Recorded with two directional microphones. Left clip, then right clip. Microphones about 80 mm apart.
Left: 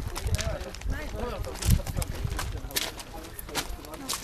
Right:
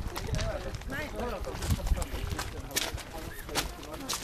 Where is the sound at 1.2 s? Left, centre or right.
Centre.